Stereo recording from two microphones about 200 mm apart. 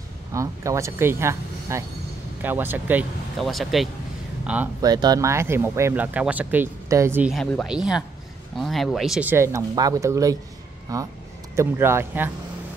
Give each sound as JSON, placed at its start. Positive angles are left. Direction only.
{"t": 0.3, "sound": "speech", "side_deg": -15}
{"t": 4.8, "sound": "speech", "side_deg": -20}